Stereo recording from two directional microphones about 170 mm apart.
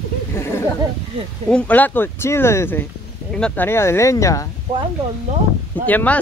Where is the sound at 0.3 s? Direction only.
15° left (ahead or behind).